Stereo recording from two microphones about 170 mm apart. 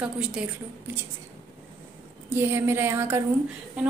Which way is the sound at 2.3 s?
15° right (ahead or behind).